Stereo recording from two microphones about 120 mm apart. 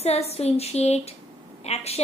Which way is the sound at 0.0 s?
60° left (ahead or behind).